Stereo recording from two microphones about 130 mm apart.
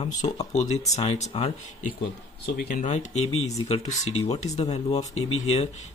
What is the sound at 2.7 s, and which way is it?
Speech, 70° left (ahead or behind).